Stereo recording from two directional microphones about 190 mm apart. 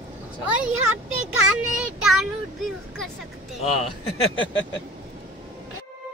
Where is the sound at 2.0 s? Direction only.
Centre (ahead or behind).